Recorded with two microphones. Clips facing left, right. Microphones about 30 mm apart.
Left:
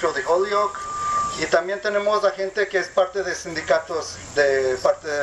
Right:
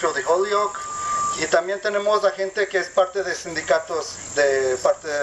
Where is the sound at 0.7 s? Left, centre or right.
Left.